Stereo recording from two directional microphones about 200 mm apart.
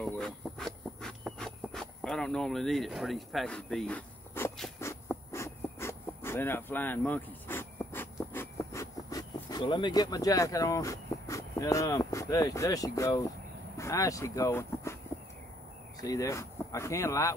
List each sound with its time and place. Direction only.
0.0 s a sound: centre (ahead or behind)
4.7 s insect: 15° left (ahead or behind)
13.7 s speech: 15° left (ahead or behind)
16.0 s speech: 15° left (ahead or behind)